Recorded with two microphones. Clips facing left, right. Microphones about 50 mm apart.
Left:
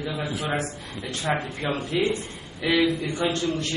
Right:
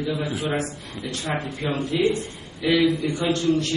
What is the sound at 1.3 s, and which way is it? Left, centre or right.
Speech, centre.